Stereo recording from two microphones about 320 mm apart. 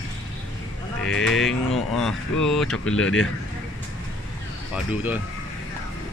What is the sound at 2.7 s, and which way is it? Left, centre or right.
Speech, left.